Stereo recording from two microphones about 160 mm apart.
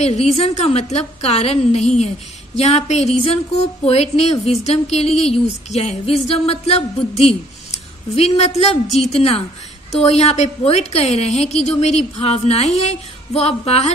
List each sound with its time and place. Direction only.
0.0 s speech: 40° left (ahead or behind)